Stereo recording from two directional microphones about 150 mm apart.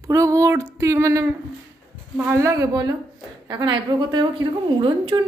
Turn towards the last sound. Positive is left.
turn(degrees=-30)  # may be behind; listen again after turning